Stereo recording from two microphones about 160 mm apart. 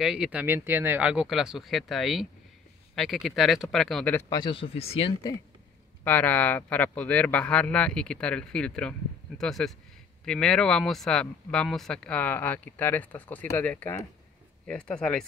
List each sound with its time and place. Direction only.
0.0 s speech: 5° right (ahead or behind); by 4.3 s 10° left (ahead or behind)
4.3 s speech: 30° left (ahead or behind)
6.0 s speech: 10° left (ahead or behind)